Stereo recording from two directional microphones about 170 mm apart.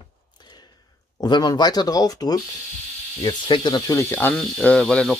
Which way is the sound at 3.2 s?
25° left (ahead or behind).